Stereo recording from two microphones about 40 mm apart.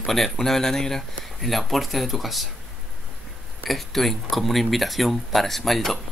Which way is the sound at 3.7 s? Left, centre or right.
Centre.